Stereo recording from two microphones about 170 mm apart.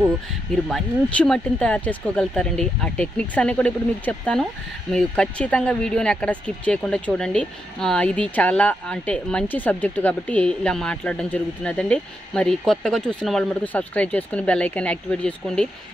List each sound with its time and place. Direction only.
0.7 s speech: 5° left (ahead or behind)